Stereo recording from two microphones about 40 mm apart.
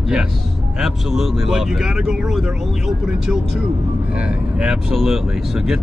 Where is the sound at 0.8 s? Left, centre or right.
Centre.